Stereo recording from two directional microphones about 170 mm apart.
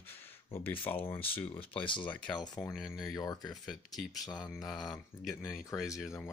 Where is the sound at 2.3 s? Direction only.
25° left (ahead or behind).